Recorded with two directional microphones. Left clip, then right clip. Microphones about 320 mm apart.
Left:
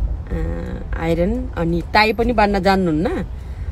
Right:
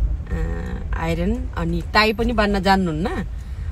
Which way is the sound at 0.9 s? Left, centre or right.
Left.